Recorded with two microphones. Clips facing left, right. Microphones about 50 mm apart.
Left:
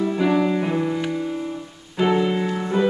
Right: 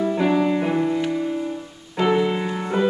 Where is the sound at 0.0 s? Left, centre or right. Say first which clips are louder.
Even; centre.